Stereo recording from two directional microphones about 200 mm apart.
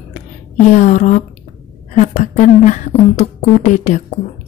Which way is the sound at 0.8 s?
35° left (ahead or behind).